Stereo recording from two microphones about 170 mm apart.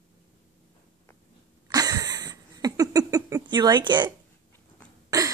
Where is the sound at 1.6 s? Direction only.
20° right (ahead or behind).